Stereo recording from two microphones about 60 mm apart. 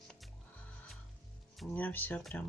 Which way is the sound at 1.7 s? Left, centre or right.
Left.